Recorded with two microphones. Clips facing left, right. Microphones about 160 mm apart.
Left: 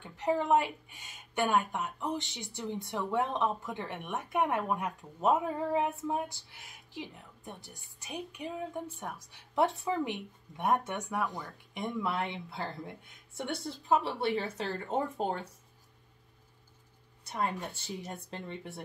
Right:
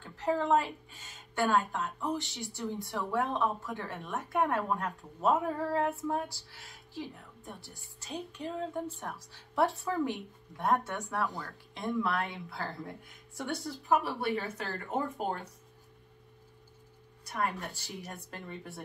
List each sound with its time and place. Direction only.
0.0 s a woman's voice: 15° left (ahead or behind)
17.2 s speech: 25° left (ahead or behind)